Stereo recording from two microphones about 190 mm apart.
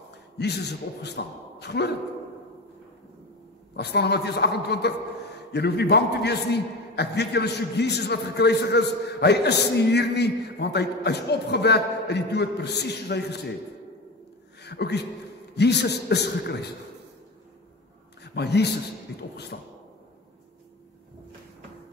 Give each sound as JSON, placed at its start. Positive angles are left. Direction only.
{"t": 0.4, "sound": "a man's voice", "side_deg": 60}
{"t": 3.7, "sound": "a man's voice", "side_deg": 60}
{"t": 14.6, "sound": "a man's voice", "side_deg": 60}
{"t": 18.2, "sound": "a man's voice", "side_deg": 60}